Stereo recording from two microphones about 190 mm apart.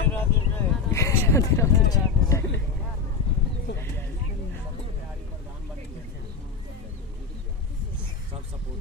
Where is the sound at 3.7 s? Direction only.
70° left (ahead or behind).